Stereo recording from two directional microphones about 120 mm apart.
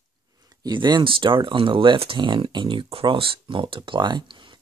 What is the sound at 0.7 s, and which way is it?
Speech, 40° right (ahead or behind).